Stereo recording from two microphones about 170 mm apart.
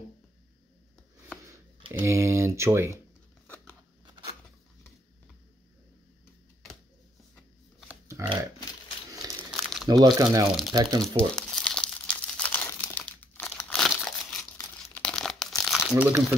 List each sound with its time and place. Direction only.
1.9 s speech: 15° right (ahead or behind)
7.9 s a sound: 15° right (ahead or behind)
9.4 s crumpling: centre (ahead or behind)
9.8 s speech: 20° right (ahead or behind)
11.0 s crumpling: 5° left (ahead or behind)